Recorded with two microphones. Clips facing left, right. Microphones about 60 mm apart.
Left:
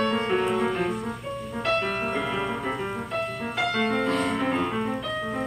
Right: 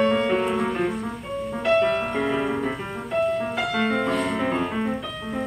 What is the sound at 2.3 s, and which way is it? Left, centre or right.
Music, right.